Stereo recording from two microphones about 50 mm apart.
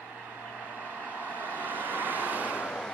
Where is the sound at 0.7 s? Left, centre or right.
Left.